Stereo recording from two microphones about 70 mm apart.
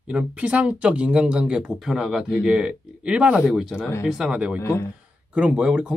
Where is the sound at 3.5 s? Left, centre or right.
Centre.